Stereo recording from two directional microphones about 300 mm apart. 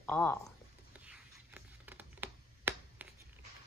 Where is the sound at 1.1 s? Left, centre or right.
Centre.